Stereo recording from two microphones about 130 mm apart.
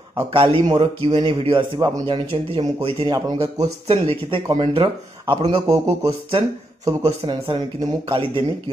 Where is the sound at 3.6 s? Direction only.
45° right (ahead or behind).